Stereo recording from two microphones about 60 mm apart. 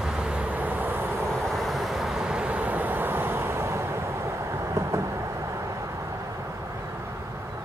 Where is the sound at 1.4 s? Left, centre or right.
Centre; by 4.9 s right.